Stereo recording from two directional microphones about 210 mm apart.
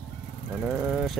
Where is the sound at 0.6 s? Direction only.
Centre (ahead or behind).